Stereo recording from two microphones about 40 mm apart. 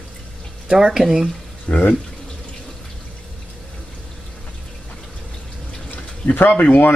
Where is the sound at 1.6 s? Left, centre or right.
Left.